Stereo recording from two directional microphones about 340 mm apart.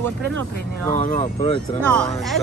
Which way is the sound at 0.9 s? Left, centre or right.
Left.